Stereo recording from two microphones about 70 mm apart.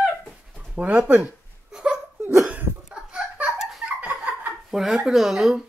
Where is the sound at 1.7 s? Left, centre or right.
Centre.